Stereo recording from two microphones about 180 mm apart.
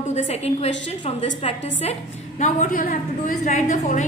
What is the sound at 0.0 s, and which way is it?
A woman's voice, 40° left (ahead or behind).